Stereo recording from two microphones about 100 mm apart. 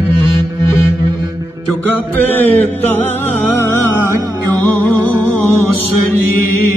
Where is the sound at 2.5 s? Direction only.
90° left.